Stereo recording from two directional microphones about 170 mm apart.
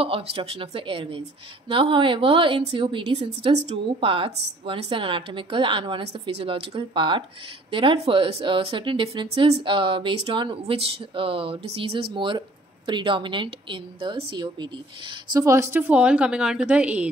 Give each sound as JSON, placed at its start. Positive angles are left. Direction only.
{"t": 0.0, "sound": "a woman's voice", "side_deg": -35}
{"t": 3.3, "sound": "a woman's voice", "side_deg": -40}